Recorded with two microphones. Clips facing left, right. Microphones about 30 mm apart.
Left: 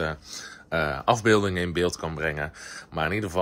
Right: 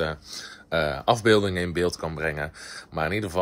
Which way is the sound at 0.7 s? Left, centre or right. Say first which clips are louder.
Right 1 dB; right.